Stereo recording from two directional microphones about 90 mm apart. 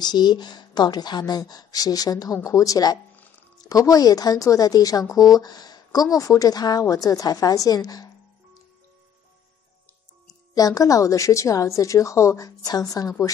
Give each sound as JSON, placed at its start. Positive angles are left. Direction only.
{"t": 0.0, "sound": "a woman's voice", "side_deg": 50}
{"t": 10.5, "sound": "a woman's voice", "side_deg": 40}